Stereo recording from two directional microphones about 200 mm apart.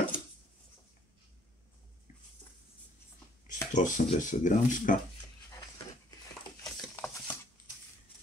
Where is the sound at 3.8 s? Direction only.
40° left (ahead or behind).